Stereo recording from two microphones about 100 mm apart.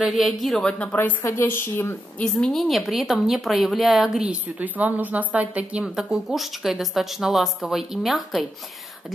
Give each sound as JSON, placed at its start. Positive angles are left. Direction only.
{"t": 0.0, "sound": "a woman's voice", "side_deg": 0}
{"t": 0.9, "sound": "speech", "side_deg": 20}
{"t": 2.1, "sound": "a woman's voice", "side_deg": 10}